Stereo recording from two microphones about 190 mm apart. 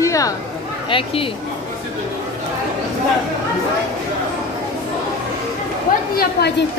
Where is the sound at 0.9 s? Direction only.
30° left (ahead or behind).